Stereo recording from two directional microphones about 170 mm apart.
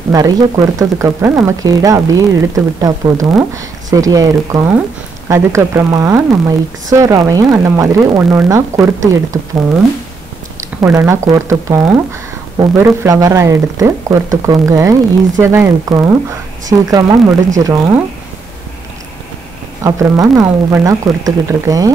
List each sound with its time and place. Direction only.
0.1 s a woman's voice: 20° right (ahead or behind)
10.8 s a woman's voice: 15° right (ahead or behind)
19.8 s speech: 20° right (ahead or behind)